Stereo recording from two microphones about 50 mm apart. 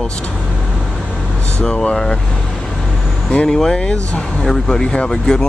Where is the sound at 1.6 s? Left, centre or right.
Left.